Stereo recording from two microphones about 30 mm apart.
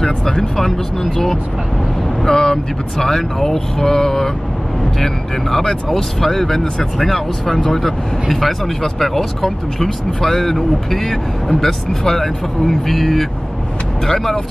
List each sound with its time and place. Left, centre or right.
0.0 s speech: centre